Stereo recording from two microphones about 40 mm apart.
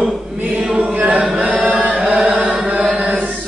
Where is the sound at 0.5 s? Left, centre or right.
Right.